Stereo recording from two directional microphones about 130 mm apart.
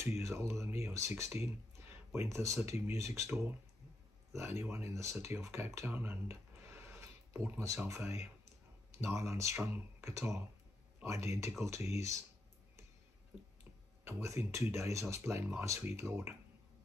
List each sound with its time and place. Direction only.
0.0 s speech: 20° right (ahead or behind)
14.0 s speech: 20° right (ahead or behind)